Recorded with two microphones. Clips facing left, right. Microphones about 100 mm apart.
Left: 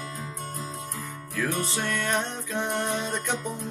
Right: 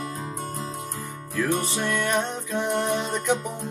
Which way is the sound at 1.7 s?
15° right (ahead or behind).